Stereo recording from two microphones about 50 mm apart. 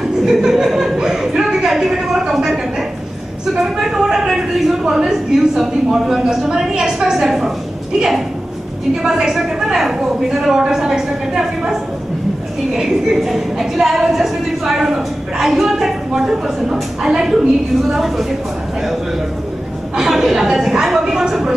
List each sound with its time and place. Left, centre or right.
0.0 s chuckle: centre
3.6 s a sound: centre
4.8 s a woman's voice: centre
8.9 s a woman's voice: centre
20.0 s a woman's voice: centre